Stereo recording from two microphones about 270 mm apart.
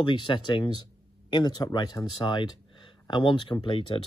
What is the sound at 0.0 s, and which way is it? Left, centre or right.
Speech, centre.